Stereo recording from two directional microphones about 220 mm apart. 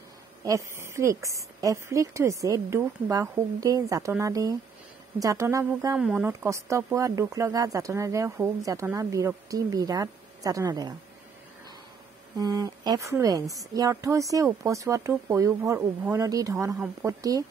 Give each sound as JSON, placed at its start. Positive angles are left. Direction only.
{"t": 0.4, "sound": "a woman's voice", "side_deg": -15}
{"t": 5.9, "sound": "a woman's voice", "side_deg": -5}
{"t": 12.4, "sound": "a woman's voice", "side_deg": -15}
{"t": 16.7, "sound": "a woman's voice", "side_deg": -5}
{"t": 17.2, "sound": "a woman's voice", "side_deg": -15}